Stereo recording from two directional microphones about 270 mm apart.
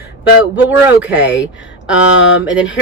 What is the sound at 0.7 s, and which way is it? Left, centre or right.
Speech, centre.